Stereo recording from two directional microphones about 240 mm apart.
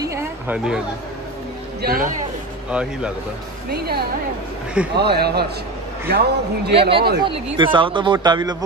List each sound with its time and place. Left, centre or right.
0.0 s chatter: centre
1.8 s a man's voice: right
2.7 s speech: centre
3.7 s a man's voice: right
6.7 s speech: right